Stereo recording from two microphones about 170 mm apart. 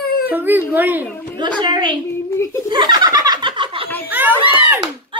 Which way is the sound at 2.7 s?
25° right (ahead or behind).